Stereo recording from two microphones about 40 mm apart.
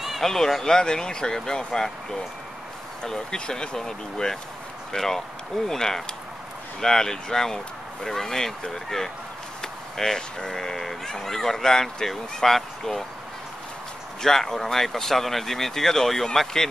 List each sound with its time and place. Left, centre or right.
0.2 s speech: centre
3.1 s speech: centre
14.2 s speech: centre